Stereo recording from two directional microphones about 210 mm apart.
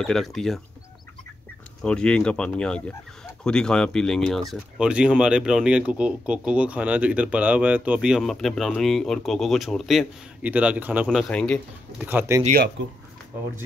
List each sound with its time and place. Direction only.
0.0 s speech: centre (ahead or behind)
1.8 s speech: 5° left (ahead or behind)
12.0 s speech: 10° right (ahead or behind)
12.8 s speech: 60° right (ahead or behind)